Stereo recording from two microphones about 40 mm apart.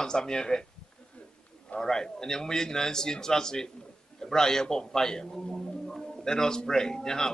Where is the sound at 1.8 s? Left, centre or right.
Centre.